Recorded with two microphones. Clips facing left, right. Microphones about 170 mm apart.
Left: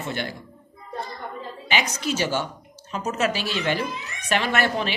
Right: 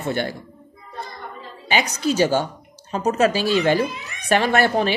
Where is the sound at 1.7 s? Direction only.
35° right (ahead or behind).